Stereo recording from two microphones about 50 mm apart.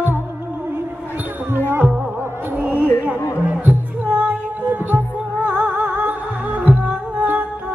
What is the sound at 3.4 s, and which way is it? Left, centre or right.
Music, right.